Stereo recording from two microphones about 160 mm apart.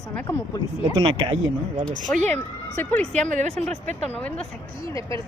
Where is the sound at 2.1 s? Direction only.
15° left (ahead or behind).